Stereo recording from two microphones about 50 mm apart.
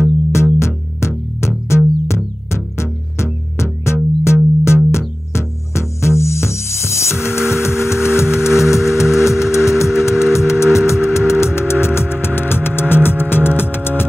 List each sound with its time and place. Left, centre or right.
0.0 s music: left